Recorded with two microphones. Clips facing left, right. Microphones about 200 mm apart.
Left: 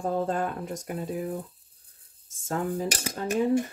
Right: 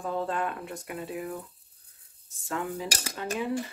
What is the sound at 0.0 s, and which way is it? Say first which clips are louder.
Speech: left 3 dB; 40° left (ahead or behind).